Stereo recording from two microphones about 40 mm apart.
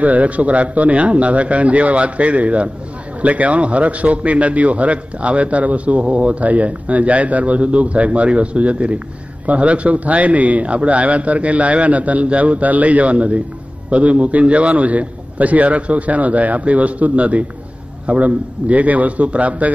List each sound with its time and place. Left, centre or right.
0.0 s a man's voice: right